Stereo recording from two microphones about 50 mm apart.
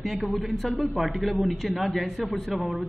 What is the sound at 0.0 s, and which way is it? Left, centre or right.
A man's voice, centre.